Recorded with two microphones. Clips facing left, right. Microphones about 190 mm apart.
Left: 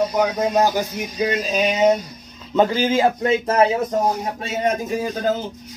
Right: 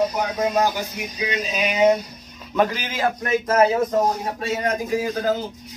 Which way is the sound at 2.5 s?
30° left (ahead or behind).